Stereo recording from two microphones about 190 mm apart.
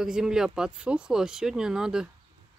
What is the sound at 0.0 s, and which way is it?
Speech, 5° right (ahead or behind).